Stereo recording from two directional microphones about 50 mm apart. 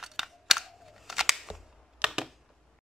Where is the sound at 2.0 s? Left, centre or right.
Centre.